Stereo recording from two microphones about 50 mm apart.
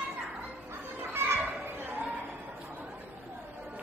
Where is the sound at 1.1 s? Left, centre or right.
Right.